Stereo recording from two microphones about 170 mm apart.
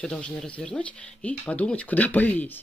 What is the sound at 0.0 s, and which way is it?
Speech, 5° left (ahead or behind).